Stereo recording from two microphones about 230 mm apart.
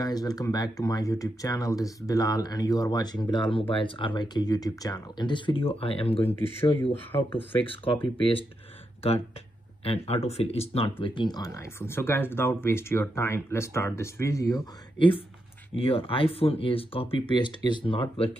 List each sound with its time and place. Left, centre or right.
0.0 s speech: centre
9.8 s speech: left